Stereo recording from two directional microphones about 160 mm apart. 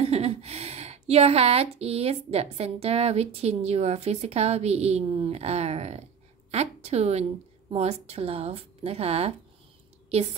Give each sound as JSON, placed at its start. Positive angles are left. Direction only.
{"t": 0.0, "sound": "a woman's voice", "side_deg": -40}